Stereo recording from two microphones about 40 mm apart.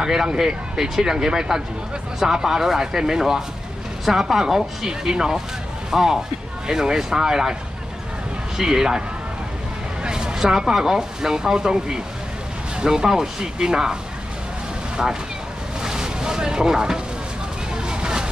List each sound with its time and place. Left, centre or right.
0.0 s speech: centre
8.5 s speech: centre
10.0 s speech: centre
15.8 s boat: centre
17.8 s vehicle: right